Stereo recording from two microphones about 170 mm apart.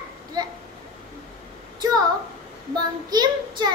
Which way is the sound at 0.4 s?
25° right (ahead or behind).